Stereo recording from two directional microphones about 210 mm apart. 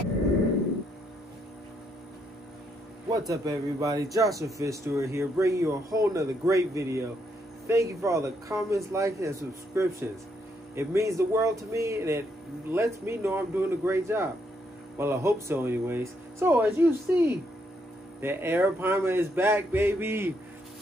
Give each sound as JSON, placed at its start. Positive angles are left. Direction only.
{"t": 3.1, "sound": "speech", "side_deg": -20}